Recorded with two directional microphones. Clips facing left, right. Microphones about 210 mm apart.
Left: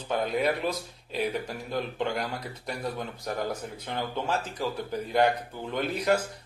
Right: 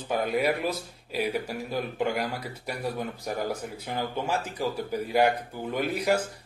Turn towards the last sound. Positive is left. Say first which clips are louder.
# even
turn(degrees=-10)  # may be behind; listen again after turning